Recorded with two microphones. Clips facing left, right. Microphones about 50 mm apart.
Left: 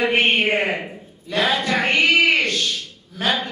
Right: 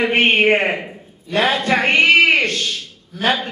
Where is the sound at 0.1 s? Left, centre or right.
Right.